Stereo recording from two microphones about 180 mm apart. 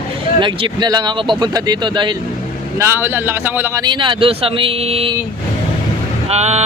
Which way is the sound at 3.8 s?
25° right (ahead or behind).